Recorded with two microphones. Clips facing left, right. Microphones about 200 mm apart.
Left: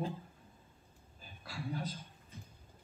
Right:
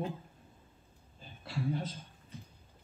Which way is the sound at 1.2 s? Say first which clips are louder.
Right 7 dB; 25° right (ahead or behind).